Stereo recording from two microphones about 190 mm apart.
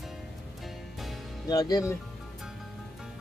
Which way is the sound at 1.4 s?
20° left (ahead or behind).